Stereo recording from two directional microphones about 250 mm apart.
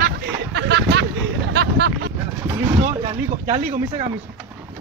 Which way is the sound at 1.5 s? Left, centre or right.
Right.